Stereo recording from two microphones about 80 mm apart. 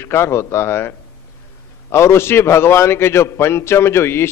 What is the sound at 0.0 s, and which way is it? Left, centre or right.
A man's voice, left.